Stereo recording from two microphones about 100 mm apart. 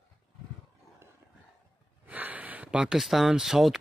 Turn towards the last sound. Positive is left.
turn(degrees=-5)  # may be behind; listen again after turning